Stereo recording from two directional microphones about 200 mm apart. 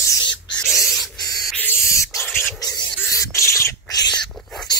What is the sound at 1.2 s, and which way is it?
Spray, 20° left (ahead or behind).